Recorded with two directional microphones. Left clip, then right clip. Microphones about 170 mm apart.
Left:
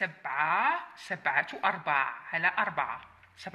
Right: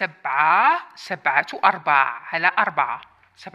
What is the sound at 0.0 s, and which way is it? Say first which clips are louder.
Speech: right 10 dB; 40° right (ahead or behind).